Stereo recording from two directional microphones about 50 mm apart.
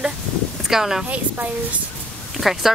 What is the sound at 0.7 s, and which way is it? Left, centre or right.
Speech, centre.